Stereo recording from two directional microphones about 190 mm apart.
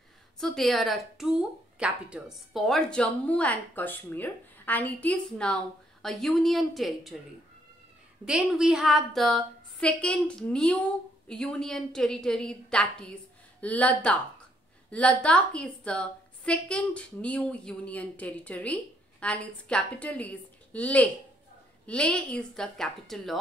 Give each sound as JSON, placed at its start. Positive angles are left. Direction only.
{"t": 0.4, "sound": "a woman's voice", "side_deg": 0}
{"t": 8.3, "sound": "a woman's voice", "side_deg": -5}